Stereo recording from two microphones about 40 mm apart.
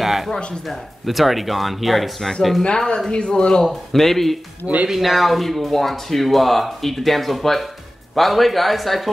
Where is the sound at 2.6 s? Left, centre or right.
Left.